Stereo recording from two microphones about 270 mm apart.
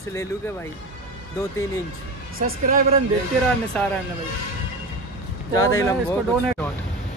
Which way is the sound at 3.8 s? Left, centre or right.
Centre.